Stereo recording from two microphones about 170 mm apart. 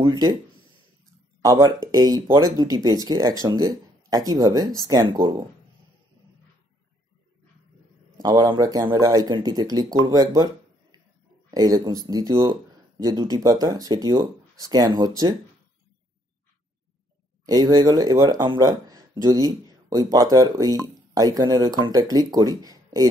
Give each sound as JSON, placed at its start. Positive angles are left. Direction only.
{"t": 0.0, "sound": "speech", "side_deg": -20}
{"t": 1.4, "sound": "speech", "side_deg": -20}
{"t": 8.2, "sound": "speech", "side_deg": -25}
{"t": 10.0, "sound": "a sound", "side_deg": -20}
{"t": 11.5, "sound": "speech", "side_deg": -20}
{"t": 17.5, "sound": "speech", "side_deg": -20}